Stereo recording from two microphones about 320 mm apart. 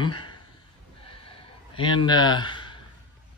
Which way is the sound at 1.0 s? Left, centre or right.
Centre.